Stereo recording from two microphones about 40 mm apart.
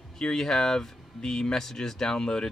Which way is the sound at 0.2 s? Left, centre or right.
Centre.